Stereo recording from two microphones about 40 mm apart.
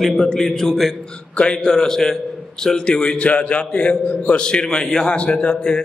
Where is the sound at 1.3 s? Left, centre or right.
Left.